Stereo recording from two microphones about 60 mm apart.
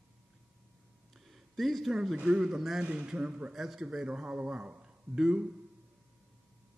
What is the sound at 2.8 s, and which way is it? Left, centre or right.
Speech, right.